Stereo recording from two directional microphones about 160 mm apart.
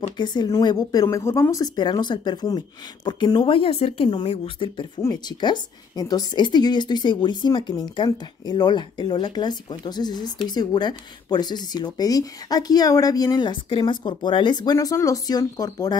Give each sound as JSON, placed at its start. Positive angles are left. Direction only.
{"t": 0.2, "sound": "a woman's voice", "side_deg": 25}